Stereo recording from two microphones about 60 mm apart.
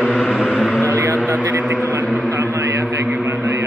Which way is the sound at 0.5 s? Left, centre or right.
Centre.